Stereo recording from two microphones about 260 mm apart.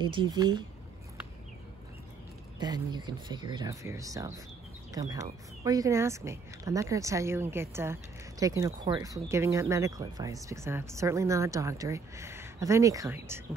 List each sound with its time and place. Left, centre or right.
0.0 s speech: centre
2.6 s speech: centre